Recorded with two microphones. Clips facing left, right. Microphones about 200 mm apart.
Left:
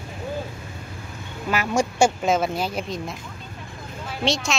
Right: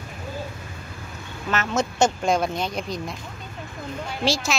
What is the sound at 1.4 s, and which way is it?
A woman's voice, 10° left (ahead or behind).